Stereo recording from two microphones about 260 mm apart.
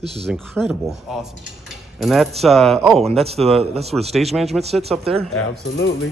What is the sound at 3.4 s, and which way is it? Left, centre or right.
Speech, right.